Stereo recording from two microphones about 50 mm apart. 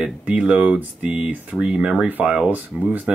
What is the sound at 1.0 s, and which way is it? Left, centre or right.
Speech, right.